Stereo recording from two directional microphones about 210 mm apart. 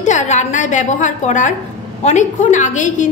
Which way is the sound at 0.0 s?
35° left (ahead or behind).